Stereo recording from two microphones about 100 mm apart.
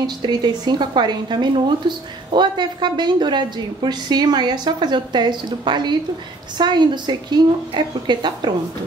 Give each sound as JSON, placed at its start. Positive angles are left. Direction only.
{"t": 0.0, "sound": "a woman's voice", "side_deg": -45}